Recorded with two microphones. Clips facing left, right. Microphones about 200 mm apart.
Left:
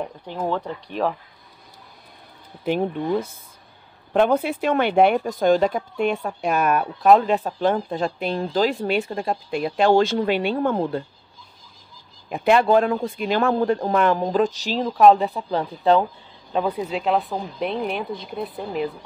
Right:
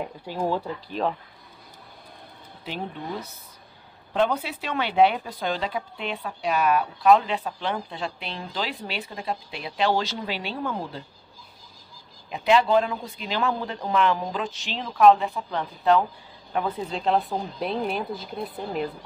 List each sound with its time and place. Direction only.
0.4 s speech: 10° right (ahead or behind)
2.6 s speech: 50° left (ahead or behind)
12.3 s speech: 50° left (ahead or behind); by 16.0 s 30° left (ahead or behind)
16.6 s speech: 10° left (ahead or behind)